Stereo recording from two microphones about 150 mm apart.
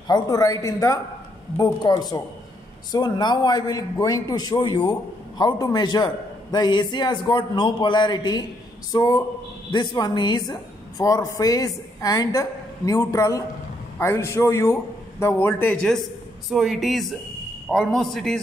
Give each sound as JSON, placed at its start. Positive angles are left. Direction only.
{"t": 0.1, "sound": "a man's voice", "side_deg": 25}
{"t": 16.4, "sound": "speech", "side_deg": 0}